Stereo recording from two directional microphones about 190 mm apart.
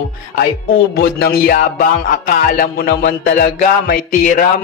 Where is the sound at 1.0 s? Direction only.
55° left (ahead or behind).